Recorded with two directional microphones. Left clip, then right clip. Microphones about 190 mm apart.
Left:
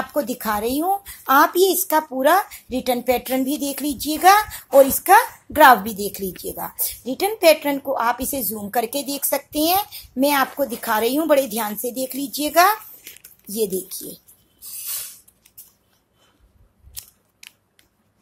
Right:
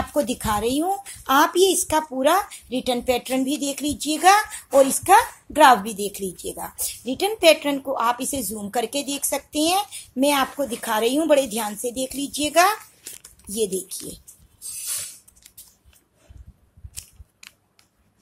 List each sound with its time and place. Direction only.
0.1 s a woman's voice: centre (ahead or behind)
5.9 s a woman's voice: 40° left (ahead or behind)
6.4 s a woman's voice: 10° left (ahead or behind)
13.7 s a woman's voice: 10° left (ahead or behind)